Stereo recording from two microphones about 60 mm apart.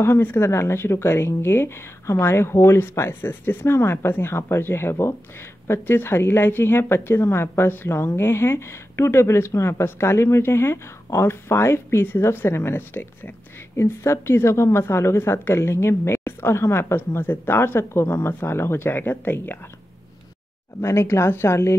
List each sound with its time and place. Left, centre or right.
0.0 s a woman's voice: left
13.7 s a woman's voice: left
20.8 s a woman's voice: left